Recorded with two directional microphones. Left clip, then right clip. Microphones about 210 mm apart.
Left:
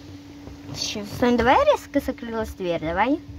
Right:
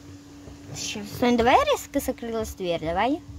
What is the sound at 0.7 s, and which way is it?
Speech, 10° right (ahead or behind).